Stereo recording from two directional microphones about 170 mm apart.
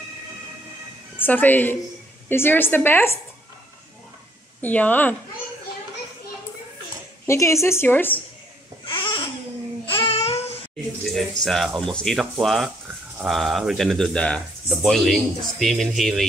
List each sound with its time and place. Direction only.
1.1 s a woman's voice: 10° left (ahead or behind)
4.6 s a woman's voice: 10° left (ahead or behind)
7.2 s a woman's voice: 15° left (ahead or behind)
8.8 s babbling: 30° left (ahead or behind)
11.4 s speech: centre (ahead or behind)